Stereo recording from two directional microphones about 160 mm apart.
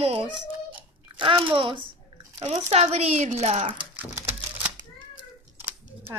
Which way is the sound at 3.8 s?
10° right (ahead or behind).